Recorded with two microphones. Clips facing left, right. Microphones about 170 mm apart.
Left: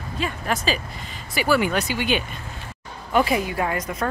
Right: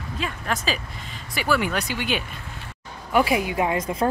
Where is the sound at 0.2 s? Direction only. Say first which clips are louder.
Left 3 dB; centre (ahead or behind).